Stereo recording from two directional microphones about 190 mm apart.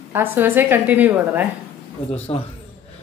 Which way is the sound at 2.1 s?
35° left (ahead or behind).